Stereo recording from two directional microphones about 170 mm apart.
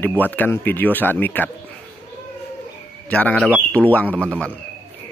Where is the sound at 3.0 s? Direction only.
10° left (ahead or behind).